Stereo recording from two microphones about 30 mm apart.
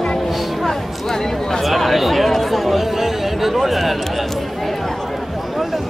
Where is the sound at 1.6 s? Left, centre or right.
Centre.